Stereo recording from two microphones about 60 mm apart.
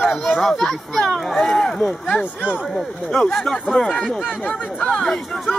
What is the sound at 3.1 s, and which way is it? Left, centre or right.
Speech, centre.